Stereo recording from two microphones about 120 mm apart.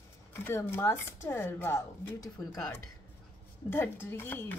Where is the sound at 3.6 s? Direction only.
20° left (ahead or behind).